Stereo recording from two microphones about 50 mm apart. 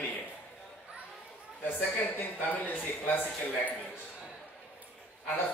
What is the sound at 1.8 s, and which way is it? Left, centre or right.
A man's voice, left.